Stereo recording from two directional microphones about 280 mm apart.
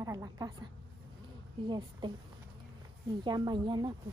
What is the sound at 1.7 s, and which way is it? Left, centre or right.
Speech, centre.